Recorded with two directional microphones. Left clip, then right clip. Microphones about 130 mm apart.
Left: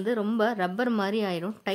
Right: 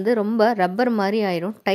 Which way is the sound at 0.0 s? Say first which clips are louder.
Right 8 dB; 30° right (ahead or behind).